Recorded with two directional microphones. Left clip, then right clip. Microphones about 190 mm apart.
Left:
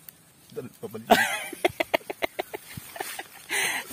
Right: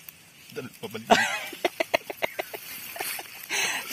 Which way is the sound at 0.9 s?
25° left (ahead or behind).